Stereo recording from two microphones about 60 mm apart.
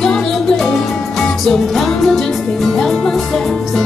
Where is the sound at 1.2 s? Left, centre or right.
Centre.